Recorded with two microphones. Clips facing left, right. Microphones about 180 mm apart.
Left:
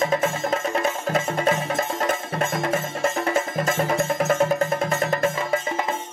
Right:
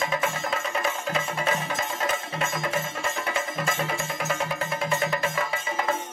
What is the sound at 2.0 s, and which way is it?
Music, 50° left (ahead or behind).